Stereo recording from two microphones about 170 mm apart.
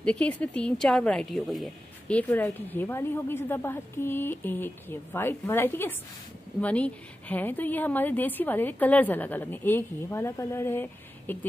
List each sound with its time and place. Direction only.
0.0 s speech: 5° left (ahead or behind)